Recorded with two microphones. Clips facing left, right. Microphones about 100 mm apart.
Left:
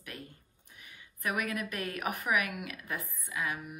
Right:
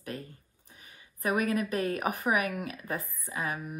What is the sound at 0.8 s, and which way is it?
A woman's voice, 30° right (ahead or behind).